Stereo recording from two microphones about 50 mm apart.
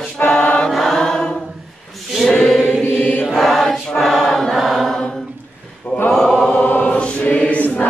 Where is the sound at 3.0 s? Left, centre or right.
Left.